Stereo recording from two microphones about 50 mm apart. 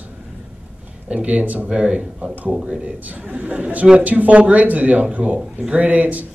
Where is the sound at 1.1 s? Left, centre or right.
Right.